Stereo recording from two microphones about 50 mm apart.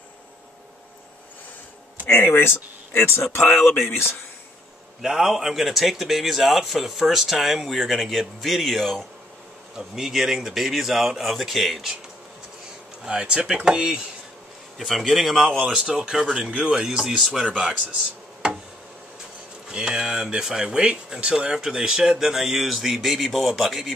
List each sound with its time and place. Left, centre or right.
2.0 s speech: left
5.0 s speech: centre
9.8 s speech: centre
13.0 s speech: centre
14.9 s speech: centre
15.7 s speech: centre
17.5 s speech: right
19.7 s speech: centre